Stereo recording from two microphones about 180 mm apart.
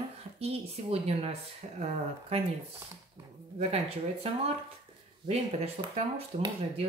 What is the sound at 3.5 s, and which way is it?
Speech, 35° right (ahead or behind).